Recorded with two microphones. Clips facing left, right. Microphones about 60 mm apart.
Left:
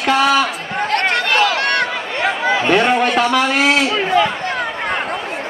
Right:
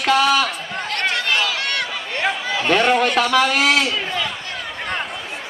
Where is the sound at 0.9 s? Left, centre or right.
Left.